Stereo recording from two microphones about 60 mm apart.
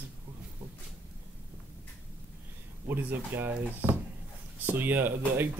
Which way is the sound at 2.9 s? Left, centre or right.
Right.